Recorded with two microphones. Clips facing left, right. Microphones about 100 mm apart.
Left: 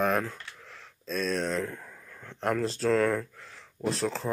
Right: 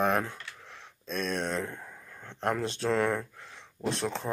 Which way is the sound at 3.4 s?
Centre (ahead or behind).